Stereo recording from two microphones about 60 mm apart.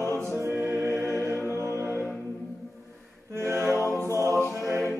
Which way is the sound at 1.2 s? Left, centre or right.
Left.